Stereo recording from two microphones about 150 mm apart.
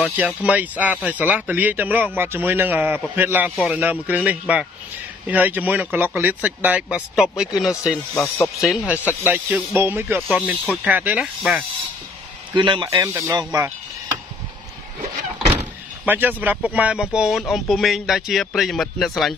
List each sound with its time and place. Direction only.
0.0 s speech: 10° right (ahead or behind)
8.1 s speech: 20° left (ahead or behind)
8.5 s speech: centre (ahead or behind)
10.2 s speech: 5° right (ahead or behind)
12.5 s speech: 30° right (ahead or behind)
16.1 s speech: 10° right (ahead or behind)